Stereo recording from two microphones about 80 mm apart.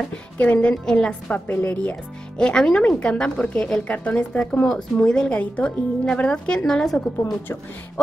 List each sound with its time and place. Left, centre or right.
0.4 s speech: centre
1.5 s speech: left
2.3 s speech: centre